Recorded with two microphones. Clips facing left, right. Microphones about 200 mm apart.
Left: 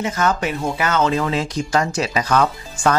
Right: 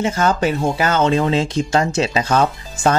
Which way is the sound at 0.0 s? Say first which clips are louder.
Right 3 dB; 30° right (ahead or behind).